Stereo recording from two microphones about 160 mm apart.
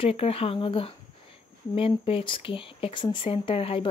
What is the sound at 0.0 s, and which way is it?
Speech, 40° left (ahead or behind).